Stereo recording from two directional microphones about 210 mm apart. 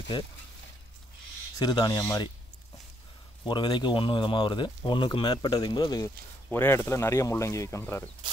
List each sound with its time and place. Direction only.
0.1 s speech: 20° left (ahead or behind)
1.6 s speech: 20° left (ahead or behind)
3.4 s speech: 20° left (ahead or behind)